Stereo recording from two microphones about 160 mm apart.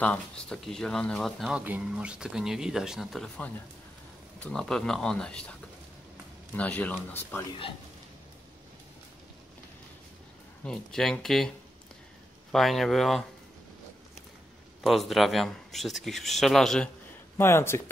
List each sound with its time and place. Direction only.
0.0 s a man's voice: 5° left (ahead or behind)
1.6 s a man's voice: 10° right (ahead or behind); by 7.4 s 10° left (ahead or behind)
10.6 s a man's voice: 5° left (ahead or behind)
14.8 s a man's voice: centre (ahead or behind)
17.4 s speech: 15° left (ahead or behind)